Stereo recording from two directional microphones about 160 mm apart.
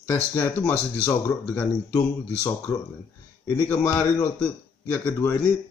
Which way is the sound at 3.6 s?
15° left (ahead or behind).